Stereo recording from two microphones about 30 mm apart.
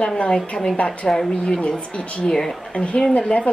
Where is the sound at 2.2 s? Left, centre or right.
Centre.